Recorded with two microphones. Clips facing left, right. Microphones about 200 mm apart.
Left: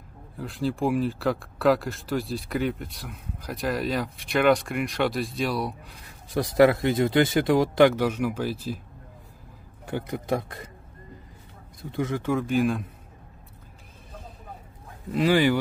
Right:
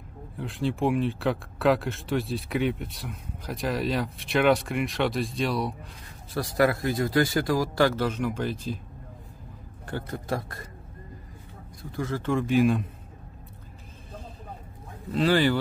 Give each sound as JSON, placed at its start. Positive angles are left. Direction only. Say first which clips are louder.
{"t": 0.4, "sound": "speech", "louder": "even", "side_deg": 0}
{"t": 6.3, "sound": "speech", "louder": "left 5 dB", "side_deg": 20}
{"t": 9.8, "sound": "a man's voice", "louder": "left 3 dB", "side_deg": 15}
{"t": 11.9, "sound": "speech", "louder": "left 1 dB", "side_deg": 20}
{"t": 15.1, "sound": "a man's voice", "louder": "left 1 dB", "side_deg": 15}